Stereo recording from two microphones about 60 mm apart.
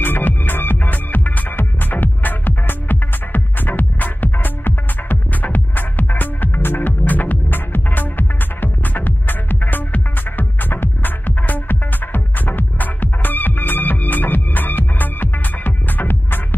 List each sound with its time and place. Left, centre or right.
0.0 s music: left